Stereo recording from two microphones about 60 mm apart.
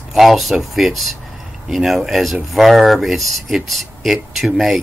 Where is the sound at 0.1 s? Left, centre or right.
Centre.